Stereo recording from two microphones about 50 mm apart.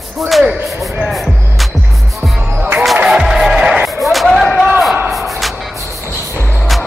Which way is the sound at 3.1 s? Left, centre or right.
Centre.